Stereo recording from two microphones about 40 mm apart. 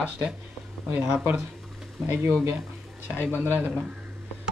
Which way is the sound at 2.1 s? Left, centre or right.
Right.